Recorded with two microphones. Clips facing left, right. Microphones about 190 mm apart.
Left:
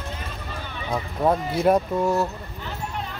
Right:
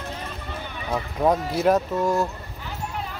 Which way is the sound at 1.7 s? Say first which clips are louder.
Left 1 dB; 10° left (ahead or behind).